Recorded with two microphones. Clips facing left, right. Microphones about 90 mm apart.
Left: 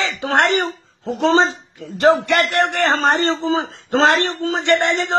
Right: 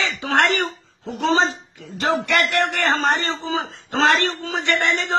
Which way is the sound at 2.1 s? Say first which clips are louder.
Left 7 dB; 35° left (ahead or behind).